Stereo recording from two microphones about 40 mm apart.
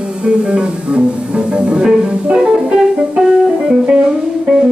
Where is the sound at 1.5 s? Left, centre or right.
Right.